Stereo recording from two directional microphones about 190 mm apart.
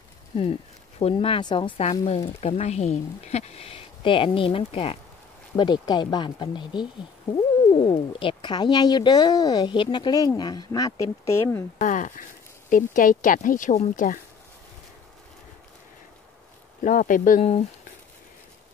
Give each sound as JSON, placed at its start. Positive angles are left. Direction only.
{"t": 0.4, "sound": "speech", "side_deg": 30}
{"t": 11.8, "sound": "speech", "side_deg": 40}
{"t": 16.8, "sound": "speech", "side_deg": 45}